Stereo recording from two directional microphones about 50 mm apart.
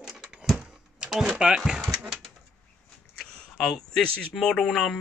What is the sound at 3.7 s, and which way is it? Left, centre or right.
Speech, centre.